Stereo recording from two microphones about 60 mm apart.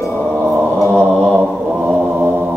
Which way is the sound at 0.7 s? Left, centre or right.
Centre.